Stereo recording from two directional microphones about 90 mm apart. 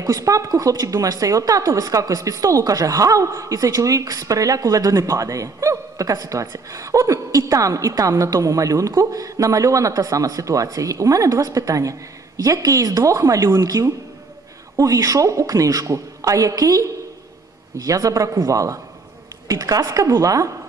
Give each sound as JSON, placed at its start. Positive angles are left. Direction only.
{"t": 0.0, "sound": "a woman's voice", "side_deg": -40}